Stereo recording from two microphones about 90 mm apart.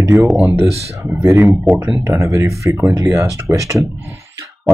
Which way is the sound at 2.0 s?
30° right (ahead or behind).